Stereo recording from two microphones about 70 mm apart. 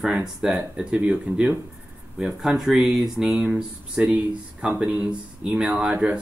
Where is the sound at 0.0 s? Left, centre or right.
Centre.